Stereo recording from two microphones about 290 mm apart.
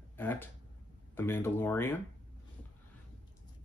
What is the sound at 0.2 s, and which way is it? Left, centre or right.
Speech, centre.